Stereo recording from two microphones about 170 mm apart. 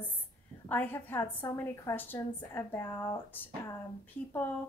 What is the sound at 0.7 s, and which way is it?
Speech, 10° left (ahead or behind).